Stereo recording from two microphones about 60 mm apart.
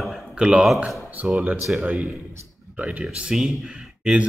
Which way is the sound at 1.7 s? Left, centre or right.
Centre.